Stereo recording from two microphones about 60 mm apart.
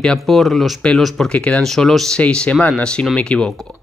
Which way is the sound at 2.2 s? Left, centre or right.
Centre.